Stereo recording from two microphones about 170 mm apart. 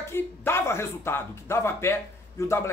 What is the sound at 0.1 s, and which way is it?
Speech, 15° left (ahead or behind).